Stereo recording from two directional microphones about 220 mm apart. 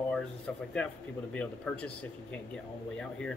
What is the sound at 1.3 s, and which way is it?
Speech, 5° left (ahead or behind).